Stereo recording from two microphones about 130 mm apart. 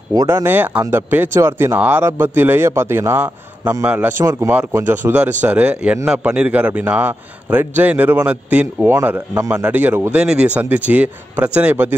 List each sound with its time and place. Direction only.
0.1 s speech: 25° right (ahead or behind)